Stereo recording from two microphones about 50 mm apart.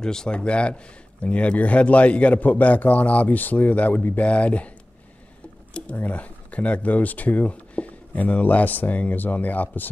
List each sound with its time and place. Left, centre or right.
0.0 s speech: centre
5.7 s squish: left
5.9 s speech: left